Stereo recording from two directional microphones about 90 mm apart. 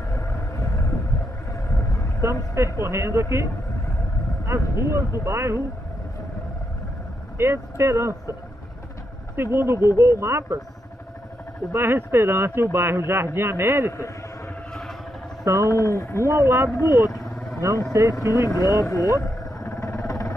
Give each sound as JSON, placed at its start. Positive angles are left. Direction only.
{"t": 2.2, "sound": "speech", "side_deg": -30}
{"t": 4.5, "sound": "speech", "side_deg": -30}
{"t": 7.3, "sound": "speech", "side_deg": -30}
{"t": 9.3, "sound": "speech", "side_deg": -25}
{"t": 11.7, "sound": "speech", "side_deg": -25}
{"t": 14.7, "sound": "vehicle", "side_deg": 5}
{"t": 15.4, "sound": "speech", "side_deg": -35}
{"t": 15.7, "sound": "speech", "side_deg": 35}
{"t": 16.3, "sound": "speech", "side_deg": -30}
{"t": 18.5, "sound": "vehicle", "side_deg": 40}